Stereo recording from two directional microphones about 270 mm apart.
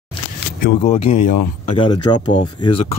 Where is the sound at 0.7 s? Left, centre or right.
Left.